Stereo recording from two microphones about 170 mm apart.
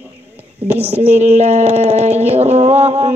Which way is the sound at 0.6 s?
35° right (ahead or behind).